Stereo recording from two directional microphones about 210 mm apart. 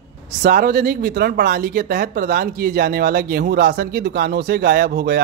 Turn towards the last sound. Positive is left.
turn(degrees=-45)  # may be behind; listen again after turning